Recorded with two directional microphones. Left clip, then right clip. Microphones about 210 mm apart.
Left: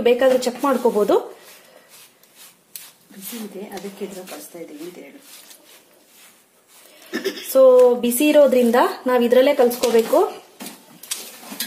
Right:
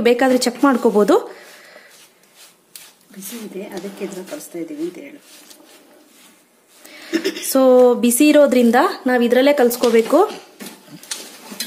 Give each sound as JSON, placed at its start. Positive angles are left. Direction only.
{"t": 0.0, "sound": "speech", "side_deg": -30}
{"t": 7.1, "sound": "speech", "side_deg": -40}